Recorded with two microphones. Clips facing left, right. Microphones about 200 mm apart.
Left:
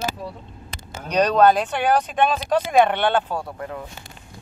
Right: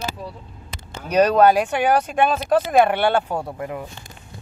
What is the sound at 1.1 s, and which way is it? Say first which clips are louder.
Speech: right 2 dB; 5° right (ahead or behind).